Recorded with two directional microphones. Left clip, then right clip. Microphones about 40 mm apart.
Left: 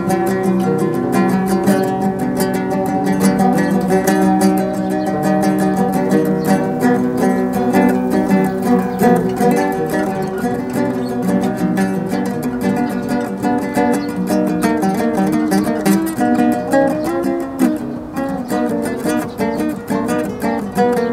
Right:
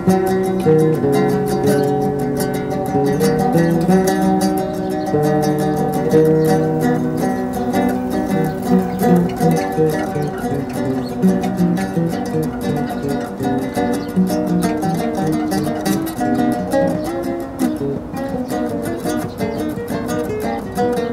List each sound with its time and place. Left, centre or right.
0.1 s music: left
2.9 s music: left
13.5 s music: left